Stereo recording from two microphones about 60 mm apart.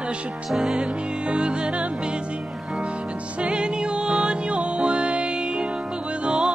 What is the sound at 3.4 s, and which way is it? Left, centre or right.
Music, centre.